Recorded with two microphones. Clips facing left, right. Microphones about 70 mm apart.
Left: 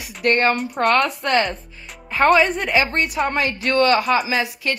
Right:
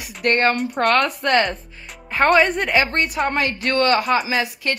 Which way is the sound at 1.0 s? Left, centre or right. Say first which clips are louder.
Right 1 dB; right.